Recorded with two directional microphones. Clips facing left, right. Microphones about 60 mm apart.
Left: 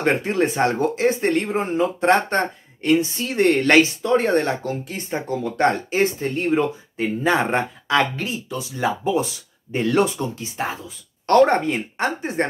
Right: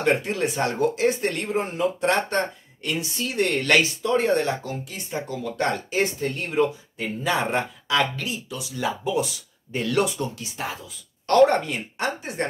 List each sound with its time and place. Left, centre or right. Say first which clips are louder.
0.0 s speech: left 3 dB; left